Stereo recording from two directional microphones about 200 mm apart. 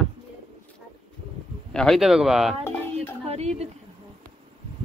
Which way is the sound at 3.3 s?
30° right (ahead or behind).